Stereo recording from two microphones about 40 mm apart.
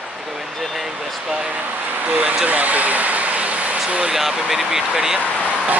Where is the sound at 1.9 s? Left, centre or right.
Right.